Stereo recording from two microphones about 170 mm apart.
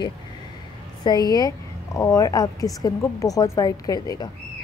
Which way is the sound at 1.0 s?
25° left (ahead or behind).